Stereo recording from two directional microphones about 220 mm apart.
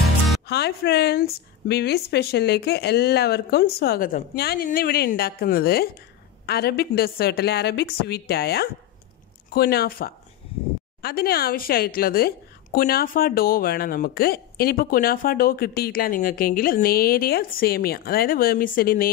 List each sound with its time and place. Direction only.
0.5 s a woman's voice: 50° left (ahead or behind)